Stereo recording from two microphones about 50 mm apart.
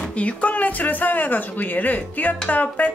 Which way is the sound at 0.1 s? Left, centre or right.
Left.